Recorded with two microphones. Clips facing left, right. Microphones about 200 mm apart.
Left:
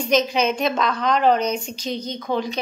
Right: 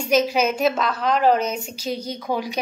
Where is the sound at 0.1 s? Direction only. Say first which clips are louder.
Right 1 dB; 5° right (ahead or behind).